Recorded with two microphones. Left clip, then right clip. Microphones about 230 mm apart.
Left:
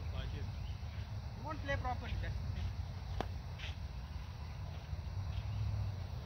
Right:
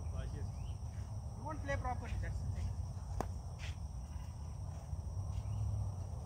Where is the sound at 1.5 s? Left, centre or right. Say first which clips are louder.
Left 1 dB; centre.